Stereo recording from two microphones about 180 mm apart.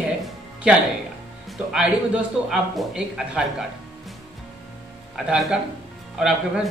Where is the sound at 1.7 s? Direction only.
5° right (ahead or behind).